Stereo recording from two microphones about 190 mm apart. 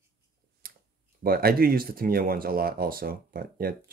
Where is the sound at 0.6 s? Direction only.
50° right (ahead or behind).